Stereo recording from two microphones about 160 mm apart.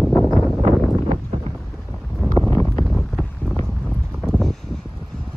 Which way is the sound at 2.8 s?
Centre (ahead or behind).